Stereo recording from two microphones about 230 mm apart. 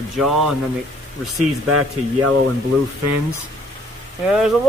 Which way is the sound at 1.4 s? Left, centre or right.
Right.